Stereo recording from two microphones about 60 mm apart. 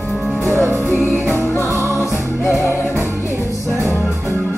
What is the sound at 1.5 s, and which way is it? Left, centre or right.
Music, left.